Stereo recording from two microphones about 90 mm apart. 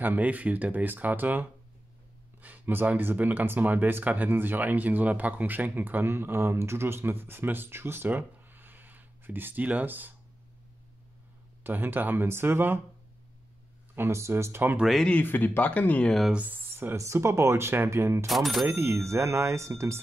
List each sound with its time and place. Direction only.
0.0 s speech: 20° right (ahead or behind)
11.6 s speech: 25° right (ahead or behind)
13.9 s speech: 30° right (ahead or behind)
14.8 s speech: centre (ahead or behind)
15.0 s speech: 20° left (ahead or behind)
16.3 s speech: 15° right (ahead or behind); by 18.2 s 30° right (ahead or behind)
18.2 s speech: centre (ahead or behind)
18.7 s speech: 30° right (ahead or behind)